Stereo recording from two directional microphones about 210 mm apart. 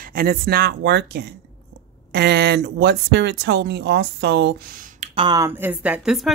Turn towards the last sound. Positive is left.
turn(degrees=0)  # may be behind; listen again after turning